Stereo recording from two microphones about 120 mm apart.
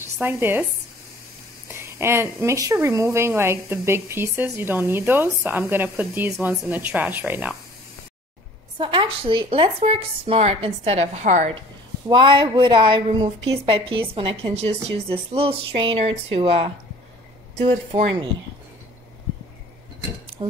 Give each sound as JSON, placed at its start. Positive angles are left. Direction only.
{"t": 0.0, "sound": "speech", "side_deg": -20}
{"t": 1.7, "sound": "speech", "side_deg": -20}
{"t": 8.7, "sound": "speech", "side_deg": -45}
{"t": 12.1, "sound": "a woman's voice", "side_deg": -45}